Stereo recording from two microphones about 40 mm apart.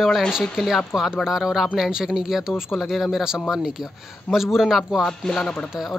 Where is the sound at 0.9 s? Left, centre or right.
Centre.